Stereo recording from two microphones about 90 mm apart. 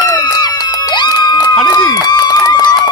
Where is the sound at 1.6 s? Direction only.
50° left (ahead or behind).